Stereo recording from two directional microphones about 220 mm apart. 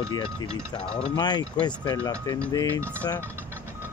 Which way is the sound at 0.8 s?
5° left (ahead or behind).